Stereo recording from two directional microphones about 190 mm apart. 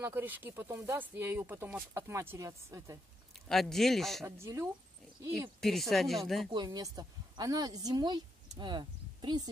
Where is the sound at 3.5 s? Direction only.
Centre (ahead or behind).